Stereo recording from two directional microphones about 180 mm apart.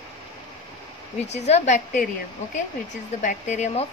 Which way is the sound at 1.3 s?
40° left (ahead or behind).